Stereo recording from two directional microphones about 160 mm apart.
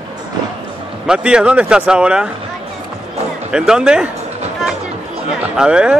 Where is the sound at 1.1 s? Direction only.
5° right (ahead or behind).